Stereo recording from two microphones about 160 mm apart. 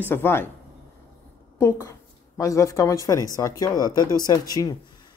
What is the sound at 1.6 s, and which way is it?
A woman's voice, 15° left (ahead or behind).